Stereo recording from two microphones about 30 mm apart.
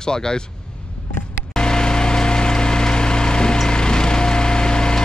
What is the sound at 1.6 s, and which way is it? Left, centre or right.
Vehicle, left.